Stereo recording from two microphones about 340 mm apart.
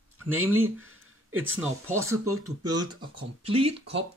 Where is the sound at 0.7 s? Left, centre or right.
Right.